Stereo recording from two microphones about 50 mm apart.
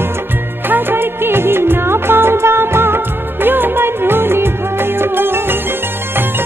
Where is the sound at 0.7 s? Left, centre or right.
Right.